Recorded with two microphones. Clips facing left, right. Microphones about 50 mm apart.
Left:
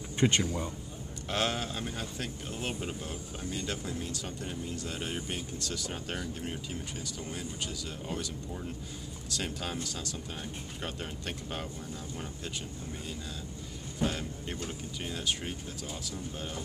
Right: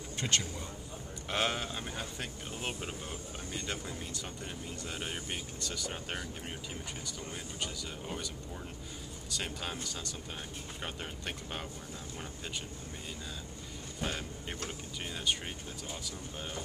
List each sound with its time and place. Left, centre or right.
0.2 s speech: left
1.3 s speech: centre
9.3 s speech: centre
14.0 s speech: centre